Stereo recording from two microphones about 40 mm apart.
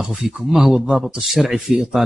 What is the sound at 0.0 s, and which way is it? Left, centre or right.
Speech, centre.